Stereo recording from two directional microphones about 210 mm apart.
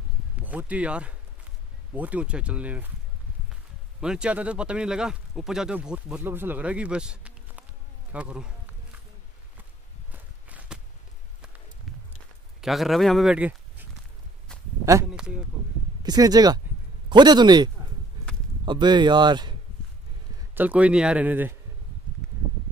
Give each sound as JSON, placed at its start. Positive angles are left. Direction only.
{"t": 0.4, "sound": "speech", "side_deg": -5}
{"t": 4.0, "sound": "speech", "side_deg": -5}
{"t": 10.1, "sound": "walk", "side_deg": -5}
{"t": 12.6, "sound": "speech", "side_deg": 0}
{"t": 15.0, "sound": "speech", "side_deg": -5}
{"t": 16.0, "sound": "speech", "side_deg": -20}
{"t": 18.7, "sound": "speech", "side_deg": -20}
{"t": 20.3, "sound": "speech", "side_deg": -10}